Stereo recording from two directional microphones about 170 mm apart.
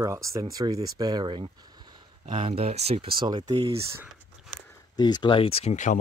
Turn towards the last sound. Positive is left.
turn(degrees=40)  # may be behind; listen again after turning